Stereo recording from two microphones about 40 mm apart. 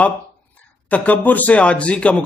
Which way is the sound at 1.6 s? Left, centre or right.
Left.